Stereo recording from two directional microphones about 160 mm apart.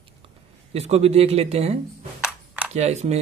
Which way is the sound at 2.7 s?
45° right (ahead or behind).